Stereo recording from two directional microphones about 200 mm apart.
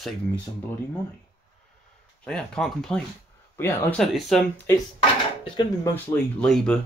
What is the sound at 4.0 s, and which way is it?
Speech, centre (ahead or behind).